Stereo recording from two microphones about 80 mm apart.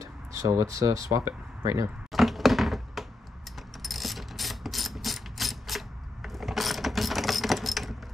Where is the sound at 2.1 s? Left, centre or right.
Centre.